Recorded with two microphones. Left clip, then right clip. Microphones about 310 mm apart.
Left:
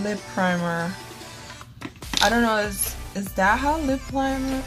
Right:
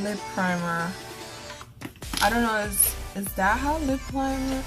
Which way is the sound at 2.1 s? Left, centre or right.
Centre.